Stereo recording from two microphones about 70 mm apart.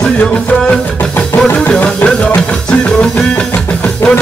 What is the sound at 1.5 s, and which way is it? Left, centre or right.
Music, left.